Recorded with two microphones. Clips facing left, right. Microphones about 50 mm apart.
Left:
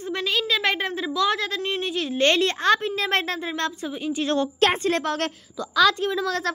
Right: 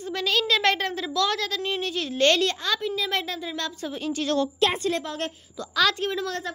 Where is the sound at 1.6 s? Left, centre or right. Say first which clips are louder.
Left 1 dB; centre.